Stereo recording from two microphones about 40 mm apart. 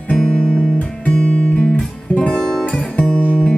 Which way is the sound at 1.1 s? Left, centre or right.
Left.